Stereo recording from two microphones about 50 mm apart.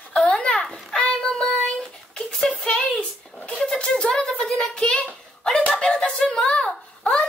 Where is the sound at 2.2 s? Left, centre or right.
Centre.